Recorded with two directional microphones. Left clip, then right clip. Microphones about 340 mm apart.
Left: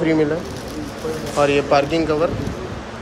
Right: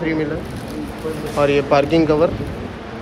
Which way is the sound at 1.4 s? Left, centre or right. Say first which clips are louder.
Right 1 dB; centre.